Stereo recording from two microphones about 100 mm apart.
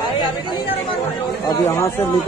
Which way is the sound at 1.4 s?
35° left (ahead or behind).